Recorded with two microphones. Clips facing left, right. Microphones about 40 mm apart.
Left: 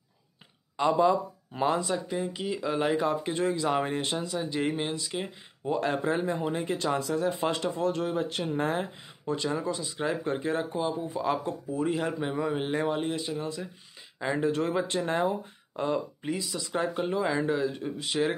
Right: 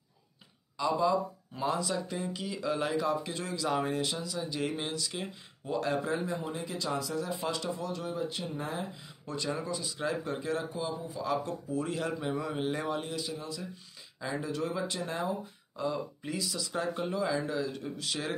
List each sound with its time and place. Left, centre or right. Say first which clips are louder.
0.7 s speech: left 5 dB; left
2.0 s speech: left 5 dB; left
2.9 s speech: left 4 dB; left
5.8 s a man's voice: left 2 dB; left
9.2 s speech: left 5 dB; left
11.4 s a man's voice: left 4 dB; left
16.2 s speech: left 3 dB; left